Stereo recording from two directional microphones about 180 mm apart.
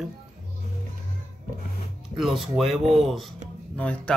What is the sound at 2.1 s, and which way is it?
Speech, centre (ahead or behind).